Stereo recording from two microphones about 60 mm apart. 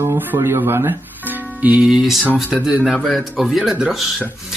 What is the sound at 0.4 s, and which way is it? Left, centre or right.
Speech, right.